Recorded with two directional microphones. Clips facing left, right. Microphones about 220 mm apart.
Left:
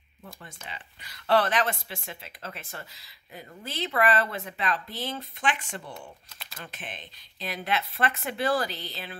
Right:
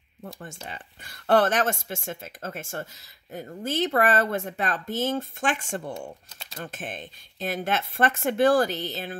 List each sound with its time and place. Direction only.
0.2 s speech: 45° right (ahead or behind)